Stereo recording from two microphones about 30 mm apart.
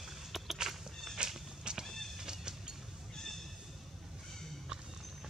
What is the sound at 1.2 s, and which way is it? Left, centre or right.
Cat, right.